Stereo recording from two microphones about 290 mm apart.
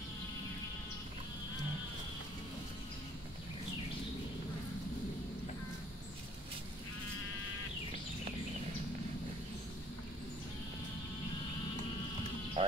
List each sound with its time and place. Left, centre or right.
12.6 s music: centre